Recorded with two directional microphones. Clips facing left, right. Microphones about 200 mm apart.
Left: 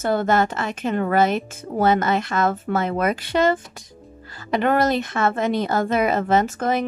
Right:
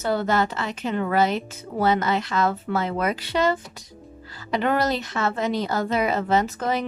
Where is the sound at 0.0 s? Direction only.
50° left (ahead or behind).